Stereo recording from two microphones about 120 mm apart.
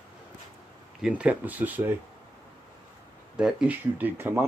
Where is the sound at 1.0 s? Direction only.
10° right (ahead or behind).